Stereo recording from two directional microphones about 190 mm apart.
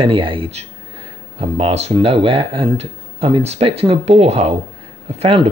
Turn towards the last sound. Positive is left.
turn(degrees=-30)  # may be behind; listen again after turning